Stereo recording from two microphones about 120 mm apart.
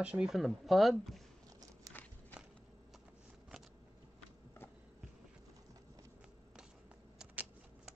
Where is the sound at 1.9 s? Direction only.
30° right (ahead or behind).